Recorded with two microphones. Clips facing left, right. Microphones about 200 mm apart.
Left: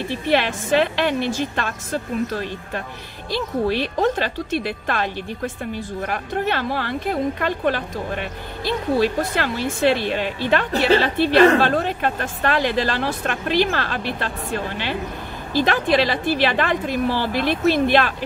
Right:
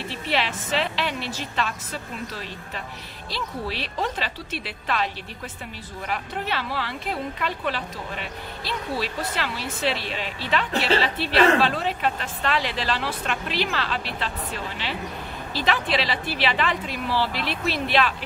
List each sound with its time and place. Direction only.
0.3 s a woman's voice: 50° left (ahead or behind)